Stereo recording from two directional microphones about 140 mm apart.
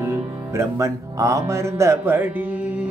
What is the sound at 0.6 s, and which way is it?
Speech, 20° right (ahead or behind).